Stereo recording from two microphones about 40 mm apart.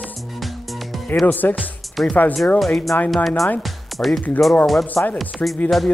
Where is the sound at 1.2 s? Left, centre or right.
Left.